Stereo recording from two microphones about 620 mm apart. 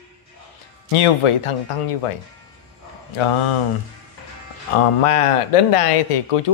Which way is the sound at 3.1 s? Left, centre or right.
Left.